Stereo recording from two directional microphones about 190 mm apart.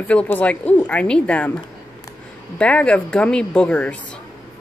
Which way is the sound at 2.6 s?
5° left (ahead or behind).